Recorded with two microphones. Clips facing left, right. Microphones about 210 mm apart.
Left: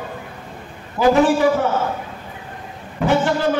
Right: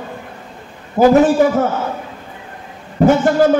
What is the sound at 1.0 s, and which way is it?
Speech, 45° right (ahead or behind).